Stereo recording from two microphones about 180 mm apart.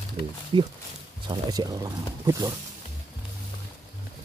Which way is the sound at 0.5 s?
25° right (ahead or behind).